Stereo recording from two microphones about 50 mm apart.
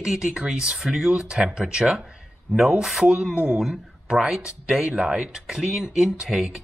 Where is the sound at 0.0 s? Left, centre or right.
Centre.